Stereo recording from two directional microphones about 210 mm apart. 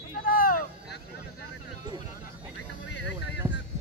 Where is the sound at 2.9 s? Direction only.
55° left (ahead or behind).